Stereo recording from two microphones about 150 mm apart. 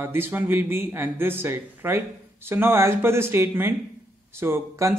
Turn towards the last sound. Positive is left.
turn(degrees=-15)  # may be behind; listen again after turning